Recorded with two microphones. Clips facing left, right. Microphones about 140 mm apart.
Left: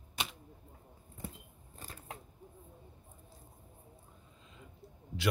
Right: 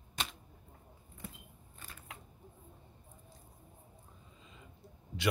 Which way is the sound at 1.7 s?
40° left (ahead or behind).